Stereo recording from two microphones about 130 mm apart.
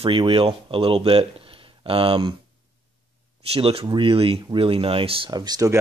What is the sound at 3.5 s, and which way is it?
Speech, 45° right (ahead or behind).